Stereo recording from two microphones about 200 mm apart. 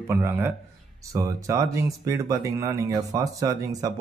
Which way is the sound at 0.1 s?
10° right (ahead or behind).